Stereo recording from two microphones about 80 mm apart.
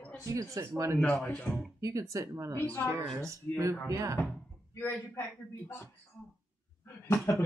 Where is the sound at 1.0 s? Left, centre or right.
Centre.